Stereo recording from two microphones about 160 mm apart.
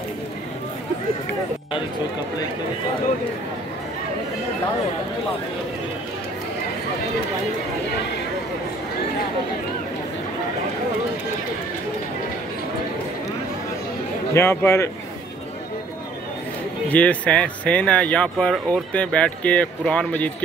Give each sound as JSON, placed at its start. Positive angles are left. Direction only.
{"t": 14.3, "sound": "speech", "side_deg": 15}
{"t": 16.9, "sound": "speech", "side_deg": 10}